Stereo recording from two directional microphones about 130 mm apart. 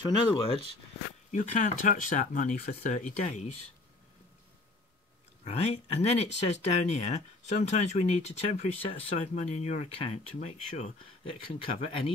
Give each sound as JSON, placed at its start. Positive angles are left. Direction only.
{"t": 0.0, "sound": "speech", "side_deg": 40}
{"t": 1.3, "sound": "speech", "side_deg": 70}
{"t": 5.4, "sound": "speech", "side_deg": 55}
{"t": 11.2, "sound": "speech", "side_deg": 45}